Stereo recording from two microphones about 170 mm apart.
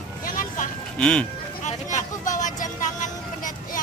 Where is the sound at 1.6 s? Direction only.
45° left (ahead or behind).